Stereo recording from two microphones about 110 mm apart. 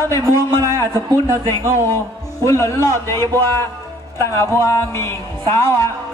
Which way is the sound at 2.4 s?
25° left (ahead or behind).